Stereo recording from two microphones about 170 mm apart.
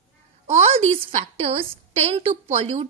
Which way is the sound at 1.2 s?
35° right (ahead or behind).